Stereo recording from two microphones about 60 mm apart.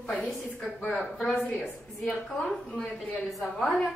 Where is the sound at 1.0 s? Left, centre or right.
Centre.